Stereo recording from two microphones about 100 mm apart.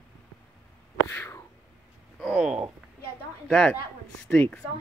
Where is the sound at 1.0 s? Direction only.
25° left (ahead or behind).